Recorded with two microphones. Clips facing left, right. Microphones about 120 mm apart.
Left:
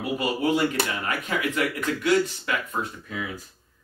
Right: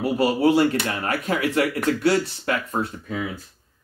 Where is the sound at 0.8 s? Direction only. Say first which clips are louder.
Right 4 dB; 35° right (ahead or behind).